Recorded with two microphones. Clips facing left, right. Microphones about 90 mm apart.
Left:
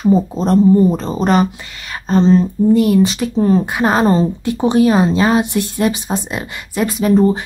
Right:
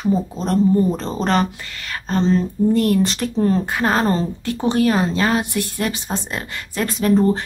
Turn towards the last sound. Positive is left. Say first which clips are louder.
# left 3 dB
turn(degrees=10)  # may be behind; listen again after turning